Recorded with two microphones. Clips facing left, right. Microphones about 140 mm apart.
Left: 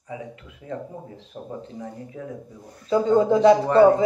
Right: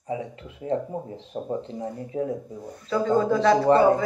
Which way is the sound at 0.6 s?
30° right (ahead or behind).